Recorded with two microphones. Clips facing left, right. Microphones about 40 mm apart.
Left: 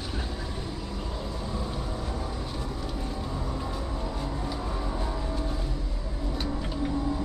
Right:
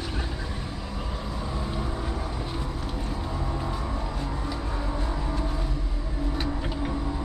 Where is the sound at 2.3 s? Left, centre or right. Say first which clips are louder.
Right 2 dB; centre.